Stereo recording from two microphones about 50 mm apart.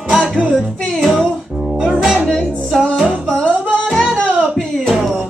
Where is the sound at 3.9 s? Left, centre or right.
Centre.